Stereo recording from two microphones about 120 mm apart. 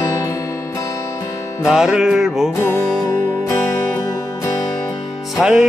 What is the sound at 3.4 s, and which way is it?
Music, 20° left (ahead or behind).